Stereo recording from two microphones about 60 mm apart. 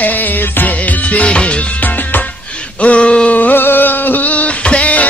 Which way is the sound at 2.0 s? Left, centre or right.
Left.